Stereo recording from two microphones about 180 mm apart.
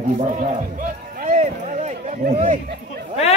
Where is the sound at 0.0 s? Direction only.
35° right (ahead or behind).